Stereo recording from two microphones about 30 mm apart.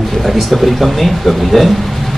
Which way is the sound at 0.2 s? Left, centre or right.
Centre.